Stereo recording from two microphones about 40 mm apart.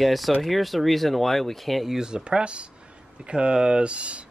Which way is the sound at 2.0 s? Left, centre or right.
Centre.